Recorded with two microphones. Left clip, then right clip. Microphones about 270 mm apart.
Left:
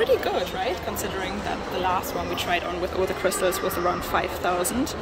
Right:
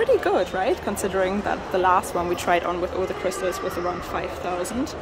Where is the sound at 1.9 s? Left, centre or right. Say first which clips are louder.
Right 5 dB; right.